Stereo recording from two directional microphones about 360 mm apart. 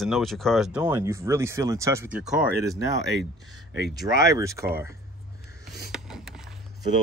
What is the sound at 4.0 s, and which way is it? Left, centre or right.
Speech, centre.